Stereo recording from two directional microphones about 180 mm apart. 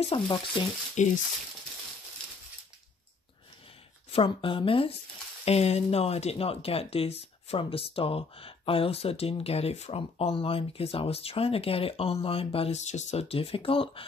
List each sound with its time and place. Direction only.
0.0 s speech: 25° left (ahead or behind)
1.0 s speech: 40° left (ahead or behind)
4.1 s speech: 30° left (ahead or behind)